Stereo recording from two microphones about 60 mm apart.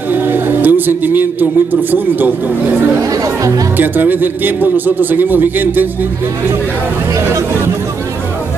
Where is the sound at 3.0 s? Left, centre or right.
Right.